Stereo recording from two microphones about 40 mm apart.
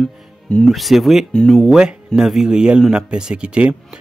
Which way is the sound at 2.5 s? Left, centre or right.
Right.